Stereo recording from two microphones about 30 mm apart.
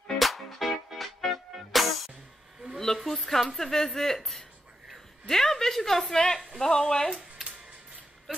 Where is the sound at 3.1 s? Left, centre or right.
Centre; by 7.0 s left.